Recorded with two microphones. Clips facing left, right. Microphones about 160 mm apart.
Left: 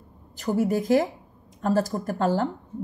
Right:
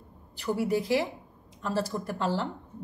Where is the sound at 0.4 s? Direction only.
45° left (ahead or behind).